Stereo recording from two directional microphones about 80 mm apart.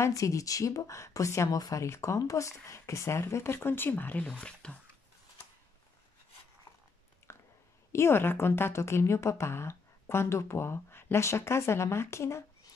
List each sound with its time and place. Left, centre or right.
0.0 s speech: left; by 4.7 s centre
7.3 s a sound: left
7.9 s speech: left